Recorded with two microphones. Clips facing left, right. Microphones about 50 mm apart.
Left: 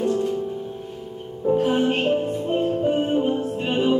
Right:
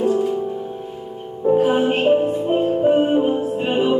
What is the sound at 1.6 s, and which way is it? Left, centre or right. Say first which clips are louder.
Music: right 3 dB; centre.